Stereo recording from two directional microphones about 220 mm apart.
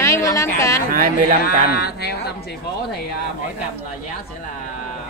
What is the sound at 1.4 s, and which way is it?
Speech, 45° left (ahead or behind).